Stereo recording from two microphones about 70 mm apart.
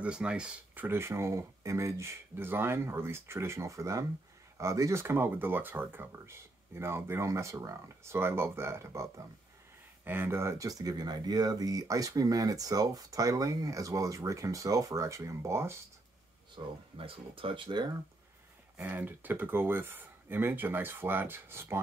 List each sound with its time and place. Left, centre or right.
0.0 s speech: centre
0.7 s speech: right
5.0 s speech: right
10.6 s speech: right
17.7 s speech: right
18.8 s speech: right